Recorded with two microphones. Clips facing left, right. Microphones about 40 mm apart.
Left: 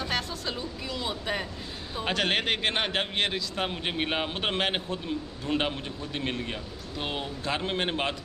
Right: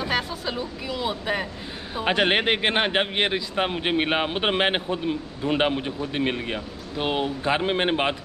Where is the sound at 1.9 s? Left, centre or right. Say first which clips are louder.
Right 6 dB; right.